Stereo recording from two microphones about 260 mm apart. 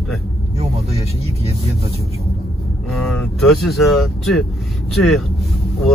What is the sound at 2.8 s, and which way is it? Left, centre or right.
Speech, centre.